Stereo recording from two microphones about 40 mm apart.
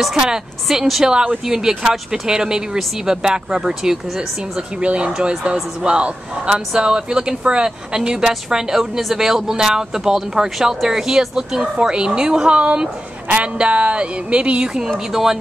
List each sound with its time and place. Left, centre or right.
0.1 s a man's voice: centre
0.7 s a woman's voice: centre
1.0 s a man's voice: centre
4.6 s speech: right
5.1 s a man's voice: centre; by 14.7 s right
15.0 s a man's voice: centre